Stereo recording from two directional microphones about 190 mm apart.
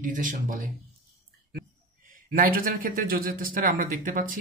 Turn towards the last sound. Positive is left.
turn(degrees=-45)  # may be behind; listen again after turning